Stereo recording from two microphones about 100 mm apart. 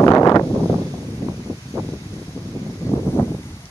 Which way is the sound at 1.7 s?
35° right (ahead or behind).